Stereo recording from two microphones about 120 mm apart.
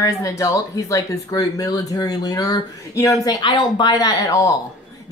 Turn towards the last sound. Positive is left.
turn(degrees=25)  # may be behind; listen again after turning